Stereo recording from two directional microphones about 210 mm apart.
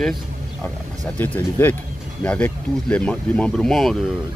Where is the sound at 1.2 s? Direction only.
10° left (ahead or behind).